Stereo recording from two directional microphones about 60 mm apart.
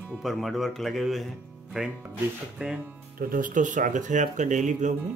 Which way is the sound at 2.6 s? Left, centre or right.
Centre.